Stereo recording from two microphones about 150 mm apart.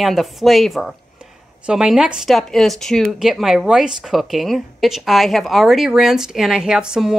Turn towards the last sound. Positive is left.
turn(degrees=-5)  # may be behind; listen again after turning